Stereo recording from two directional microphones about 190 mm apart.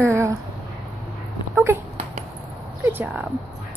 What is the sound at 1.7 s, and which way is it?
Speech, 15° right (ahead or behind).